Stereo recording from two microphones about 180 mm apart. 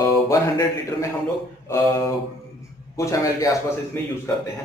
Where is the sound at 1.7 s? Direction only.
15° left (ahead or behind).